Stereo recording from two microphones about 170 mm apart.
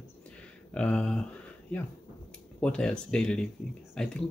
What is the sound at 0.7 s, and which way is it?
Speech, 5° left (ahead or behind).